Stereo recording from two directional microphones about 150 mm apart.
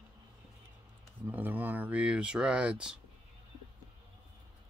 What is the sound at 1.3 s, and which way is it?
Speech, 10° right (ahead or behind).